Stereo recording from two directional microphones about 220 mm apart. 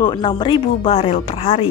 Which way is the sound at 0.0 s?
20° left (ahead or behind).